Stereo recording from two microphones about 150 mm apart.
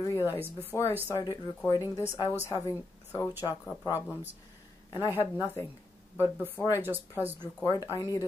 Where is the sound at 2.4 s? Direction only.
25° left (ahead or behind).